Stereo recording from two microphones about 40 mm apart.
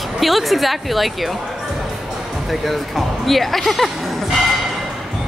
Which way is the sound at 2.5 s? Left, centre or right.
Centre.